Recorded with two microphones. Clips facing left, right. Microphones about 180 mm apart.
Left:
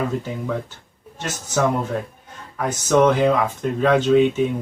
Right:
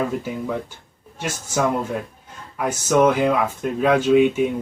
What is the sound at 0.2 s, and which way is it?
Speech, 10° right (ahead or behind).